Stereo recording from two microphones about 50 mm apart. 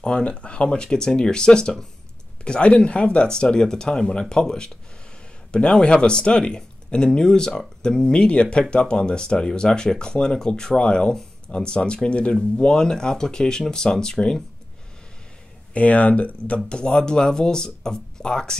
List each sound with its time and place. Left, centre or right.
0.0 s speech: centre
15.7 s speech: left